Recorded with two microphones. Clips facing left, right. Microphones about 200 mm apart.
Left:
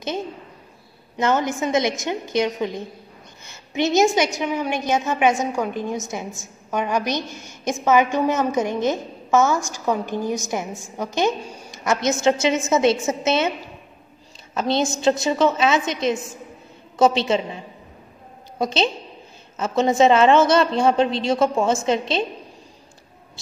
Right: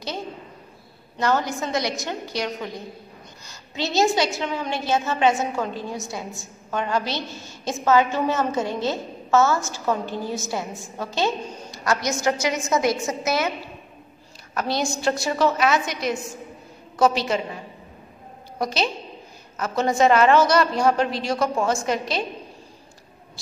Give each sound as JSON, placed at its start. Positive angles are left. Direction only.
{"t": 1.1, "sound": "a woman's voice", "side_deg": 20}
{"t": 11.8, "sound": "a woman's voice", "side_deg": 20}
{"t": 14.5, "sound": "a woman's voice", "side_deg": 25}
{"t": 18.6, "sound": "a woman's voice", "side_deg": 25}